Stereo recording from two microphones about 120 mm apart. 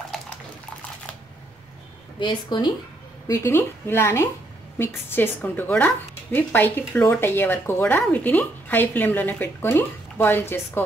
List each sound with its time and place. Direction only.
2.1 s speech: 40° left (ahead or behind)
3.3 s a woman's voice: 25° left (ahead or behind)